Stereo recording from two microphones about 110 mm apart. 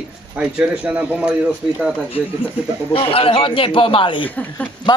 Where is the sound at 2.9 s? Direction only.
55° left (ahead or behind).